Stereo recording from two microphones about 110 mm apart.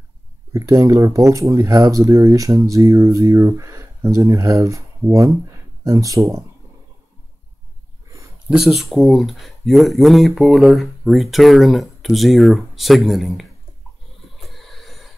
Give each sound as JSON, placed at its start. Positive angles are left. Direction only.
{"t": 0.5, "sound": "speech", "side_deg": -25}
{"t": 8.5, "sound": "speech", "side_deg": -5}
{"t": 14.5, "sound": "a sound", "side_deg": 0}